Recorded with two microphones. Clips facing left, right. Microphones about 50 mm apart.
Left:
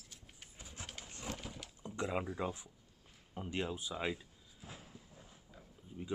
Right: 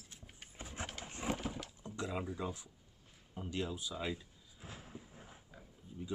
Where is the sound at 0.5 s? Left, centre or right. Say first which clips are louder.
Right 7 dB; right.